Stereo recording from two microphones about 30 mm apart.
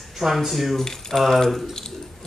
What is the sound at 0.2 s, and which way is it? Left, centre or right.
Speech, centre.